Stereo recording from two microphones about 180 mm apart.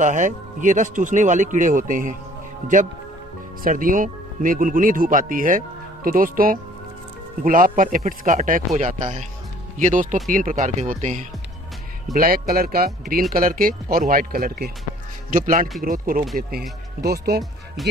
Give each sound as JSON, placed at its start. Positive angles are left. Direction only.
{"t": 0.0, "sound": "speech", "side_deg": -45}
{"t": 3.6, "sound": "speech", "side_deg": -50}
{"t": 12.1, "sound": "speech", "side_deg": -55}